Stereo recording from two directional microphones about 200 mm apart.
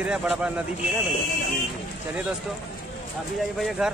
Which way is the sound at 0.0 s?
5° right (ahead or behind).